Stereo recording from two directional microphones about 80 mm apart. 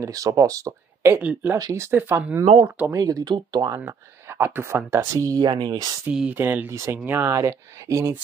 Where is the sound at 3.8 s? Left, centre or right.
Right.